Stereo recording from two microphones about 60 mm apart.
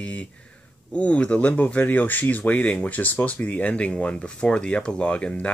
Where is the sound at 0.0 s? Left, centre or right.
Left.